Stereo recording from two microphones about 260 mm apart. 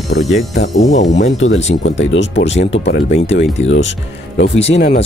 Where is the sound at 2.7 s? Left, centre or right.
Left.